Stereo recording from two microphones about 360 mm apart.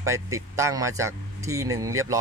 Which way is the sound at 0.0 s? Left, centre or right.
Centre.